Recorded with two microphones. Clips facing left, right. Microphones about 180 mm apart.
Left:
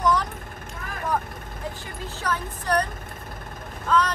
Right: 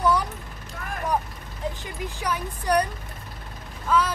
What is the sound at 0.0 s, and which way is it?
Mechanisms, 10° right (ahead or behind).